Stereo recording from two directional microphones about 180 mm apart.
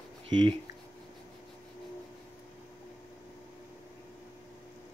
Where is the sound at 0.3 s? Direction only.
25° right (ahead or behind).